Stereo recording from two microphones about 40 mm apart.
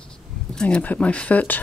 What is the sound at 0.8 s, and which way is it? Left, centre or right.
Speech, left.